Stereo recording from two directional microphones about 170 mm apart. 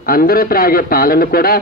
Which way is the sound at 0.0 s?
60° left (ahead or behind).